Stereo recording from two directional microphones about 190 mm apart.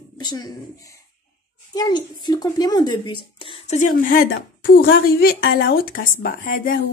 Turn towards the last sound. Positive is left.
turn(degrees=45)  # may be behind; listen again after turning